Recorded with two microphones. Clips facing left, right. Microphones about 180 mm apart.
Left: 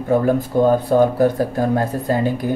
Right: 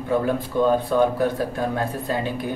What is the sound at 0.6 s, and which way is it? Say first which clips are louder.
Speech: left 4 dB; 45° left (ahead or behind).